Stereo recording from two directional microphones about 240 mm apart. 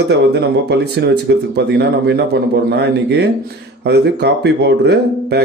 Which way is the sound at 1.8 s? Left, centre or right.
Right.